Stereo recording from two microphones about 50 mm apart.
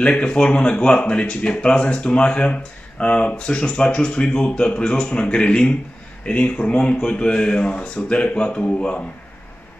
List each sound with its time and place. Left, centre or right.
0.0 s speech: centre